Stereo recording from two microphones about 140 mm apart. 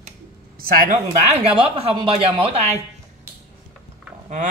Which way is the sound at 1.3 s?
45° right (ahead or behind).